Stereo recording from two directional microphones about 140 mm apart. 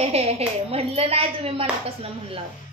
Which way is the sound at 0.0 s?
45° right (ahead or behind).